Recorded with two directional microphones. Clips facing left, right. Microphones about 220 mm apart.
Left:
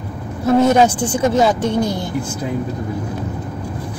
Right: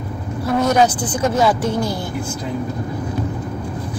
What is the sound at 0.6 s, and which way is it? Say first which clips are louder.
A woman's voice: left 2 dB; 25° left (ahead or behind).